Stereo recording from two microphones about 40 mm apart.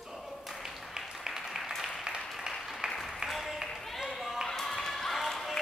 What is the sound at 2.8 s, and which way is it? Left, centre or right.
Applause, centre.